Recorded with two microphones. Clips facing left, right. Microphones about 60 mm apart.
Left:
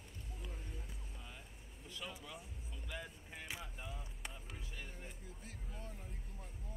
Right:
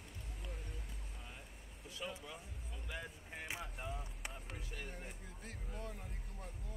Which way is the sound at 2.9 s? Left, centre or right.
Centre.